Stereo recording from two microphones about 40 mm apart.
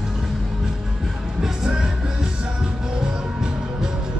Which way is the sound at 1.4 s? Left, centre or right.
Centre.